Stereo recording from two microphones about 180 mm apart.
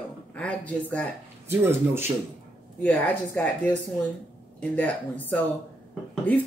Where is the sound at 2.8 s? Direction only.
10° left (ahead or behind).